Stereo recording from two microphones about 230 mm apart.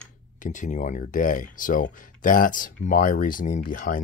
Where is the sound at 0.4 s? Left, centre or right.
Left.